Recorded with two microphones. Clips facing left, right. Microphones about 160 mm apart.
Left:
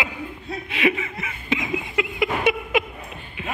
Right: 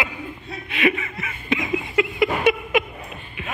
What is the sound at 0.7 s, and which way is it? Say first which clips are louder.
Chuckle: right 1 dB; 20° left (ahead or behind).